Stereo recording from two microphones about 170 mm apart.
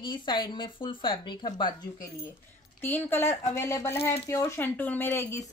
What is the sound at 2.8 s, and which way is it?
Speech, 10° left (ahead or behind).